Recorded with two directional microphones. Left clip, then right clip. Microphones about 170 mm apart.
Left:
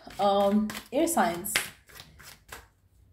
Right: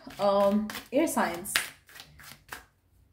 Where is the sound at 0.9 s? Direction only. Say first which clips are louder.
Left 1 dB; 15° right (ahead or behind).